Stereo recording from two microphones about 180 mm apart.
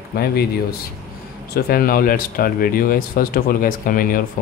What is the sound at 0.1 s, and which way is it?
Speech, 60° left (ahead or behind).